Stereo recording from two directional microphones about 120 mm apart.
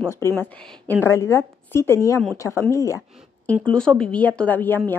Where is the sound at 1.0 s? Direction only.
25° left (ahead or behind).